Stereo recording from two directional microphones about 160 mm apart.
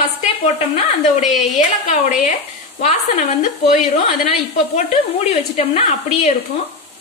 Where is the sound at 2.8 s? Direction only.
50° left (ahead or behind).